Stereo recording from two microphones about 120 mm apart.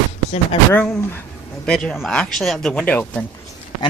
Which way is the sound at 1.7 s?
10° left (ahead or behind).